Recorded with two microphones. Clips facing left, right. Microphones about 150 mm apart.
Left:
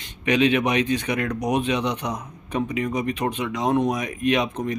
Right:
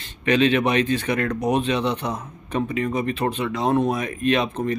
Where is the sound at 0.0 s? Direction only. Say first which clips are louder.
Right 1 dB; 15° left (ahead or behind).